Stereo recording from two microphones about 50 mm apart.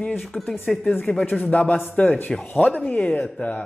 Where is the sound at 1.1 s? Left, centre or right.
Left.